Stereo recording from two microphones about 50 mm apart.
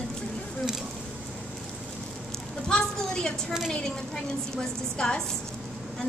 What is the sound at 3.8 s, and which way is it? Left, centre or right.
A woman's voice, centre.